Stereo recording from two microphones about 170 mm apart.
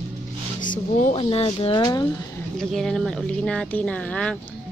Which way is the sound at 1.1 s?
35° left (ahead or behind).